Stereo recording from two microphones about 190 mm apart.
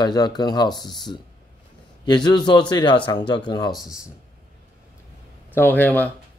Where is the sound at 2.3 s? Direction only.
25° left (ahead or behind).